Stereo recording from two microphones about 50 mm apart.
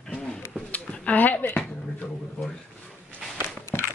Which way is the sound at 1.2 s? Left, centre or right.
Left.